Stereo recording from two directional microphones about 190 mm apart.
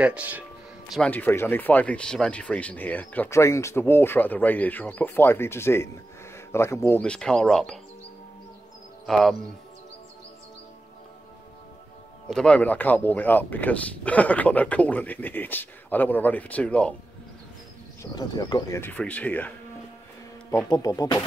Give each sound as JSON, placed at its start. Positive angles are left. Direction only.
{"t": 0.0, "sound": "speech", "side_deg": -5}
{"t": 9.0, "sound": "speech", "side_deg": 0}
{"t": 12.3, "sound": "speech", "side_deg": 5}
{"t": 18.0, "sound": "speech", "side_deg": 20}
{"t": 20.5, "sound": "music", "side_deg": 20}